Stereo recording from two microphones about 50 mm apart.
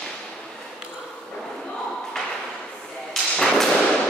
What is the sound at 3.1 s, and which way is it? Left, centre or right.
Thump, centre.